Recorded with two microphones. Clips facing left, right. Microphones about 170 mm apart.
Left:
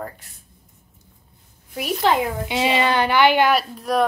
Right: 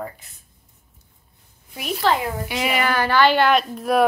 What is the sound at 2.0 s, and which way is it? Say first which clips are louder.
A child's voice: left 1 dB; 20° left (ahead or behind).